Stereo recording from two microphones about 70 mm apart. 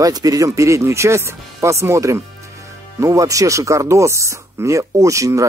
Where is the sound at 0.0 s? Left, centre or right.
Right.